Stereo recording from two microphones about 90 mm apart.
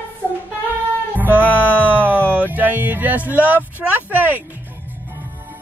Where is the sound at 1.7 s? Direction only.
15° right (ahead or behind).